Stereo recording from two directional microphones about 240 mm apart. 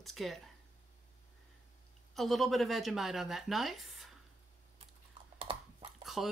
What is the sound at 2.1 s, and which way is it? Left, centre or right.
Speech, centre.